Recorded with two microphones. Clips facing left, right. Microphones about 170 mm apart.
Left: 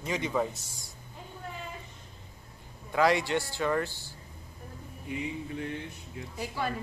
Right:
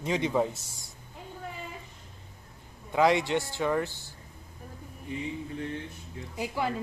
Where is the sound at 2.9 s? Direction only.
20° right (ahead or behind).